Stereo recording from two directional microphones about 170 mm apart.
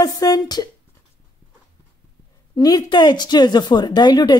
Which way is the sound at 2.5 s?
25° left (ahead or behind).